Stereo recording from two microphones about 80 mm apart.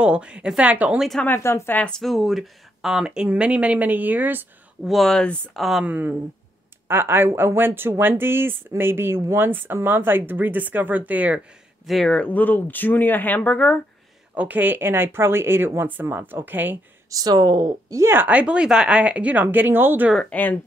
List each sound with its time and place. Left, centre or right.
0.0 s speech: centre
0.9 s speech: centre
1.2 s speech: left
1.8 s speech: centre; by 4.5 s right
4.8 s speech: centre
5.5 s speech: centre
5.9 s speech: right
11.8 s speech: centre
12.1 s speech: centre
14.3 s speech: centre
17.1 s speech: right
18.0 s speech: right
20.3 s speech: centre